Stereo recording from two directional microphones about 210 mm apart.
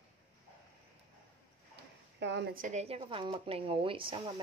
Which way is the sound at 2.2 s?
55° right (ahead or behind).